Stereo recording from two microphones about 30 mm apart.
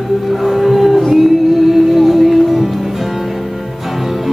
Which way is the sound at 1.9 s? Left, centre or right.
Centre.